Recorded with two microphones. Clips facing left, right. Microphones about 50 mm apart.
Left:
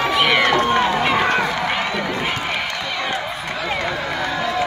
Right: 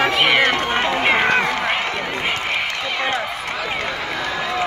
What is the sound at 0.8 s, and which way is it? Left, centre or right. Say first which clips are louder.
Run: even; right.